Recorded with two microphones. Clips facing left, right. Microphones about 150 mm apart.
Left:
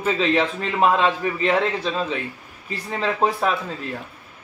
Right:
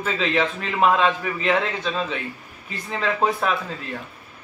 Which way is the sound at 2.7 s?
30° left (ahead or behind).